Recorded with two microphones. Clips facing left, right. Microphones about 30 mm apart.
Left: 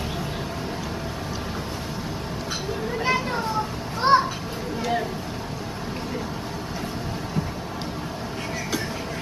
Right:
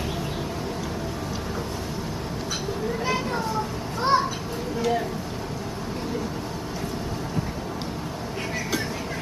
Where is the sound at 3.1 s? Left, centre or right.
Centre.